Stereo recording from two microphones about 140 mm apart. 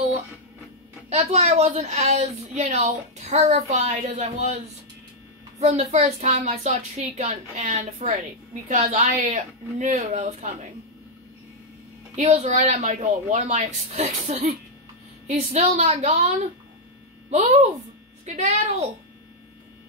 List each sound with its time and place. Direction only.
1.1 s a woman's voice: 50° right (ahead or behind)
5.6 s a woman's voice: 50° right (ahead or behind)
12.2 s a woman's voice: 55° right (ahead or behind)